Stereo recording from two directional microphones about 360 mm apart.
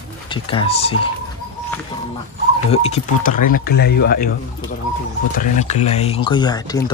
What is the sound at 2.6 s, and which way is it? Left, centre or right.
Speech, centre.